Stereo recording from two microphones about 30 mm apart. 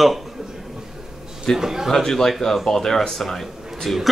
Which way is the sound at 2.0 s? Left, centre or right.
Centre.